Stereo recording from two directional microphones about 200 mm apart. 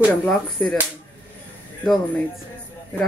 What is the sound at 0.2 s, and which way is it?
Speech, 5° left (ahead or behind).